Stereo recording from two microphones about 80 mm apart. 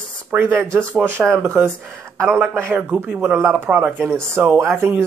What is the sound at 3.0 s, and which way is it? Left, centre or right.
Speech, centre.